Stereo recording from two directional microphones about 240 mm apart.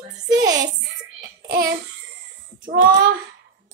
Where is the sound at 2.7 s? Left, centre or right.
Right.